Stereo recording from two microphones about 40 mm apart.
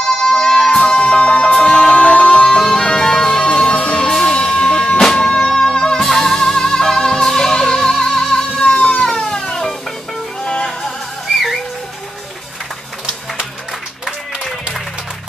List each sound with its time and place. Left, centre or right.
0.1 s music: centre